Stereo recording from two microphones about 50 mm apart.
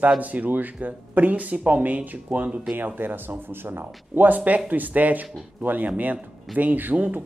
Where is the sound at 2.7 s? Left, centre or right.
Right.